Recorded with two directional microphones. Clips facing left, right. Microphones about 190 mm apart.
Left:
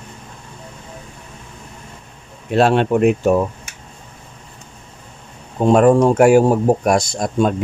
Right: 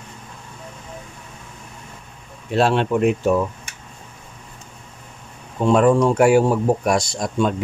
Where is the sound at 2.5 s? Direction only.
55° left (ahead or behind).